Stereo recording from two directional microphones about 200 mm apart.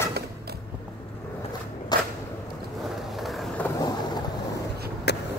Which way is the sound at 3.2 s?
Centre (ahead or behind).